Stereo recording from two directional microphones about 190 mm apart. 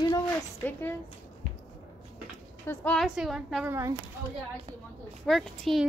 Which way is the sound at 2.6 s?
10° left (ahead or behind).